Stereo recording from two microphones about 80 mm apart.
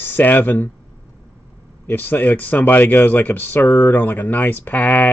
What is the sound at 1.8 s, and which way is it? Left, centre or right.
A man's voice, left.